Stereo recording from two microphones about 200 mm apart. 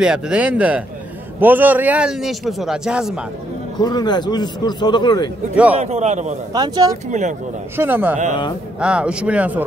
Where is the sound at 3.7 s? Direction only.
20° left (ahead or behind).